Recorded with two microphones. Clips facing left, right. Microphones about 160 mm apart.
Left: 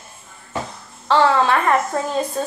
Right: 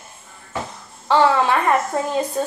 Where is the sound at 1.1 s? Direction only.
15° right (ahead or behind).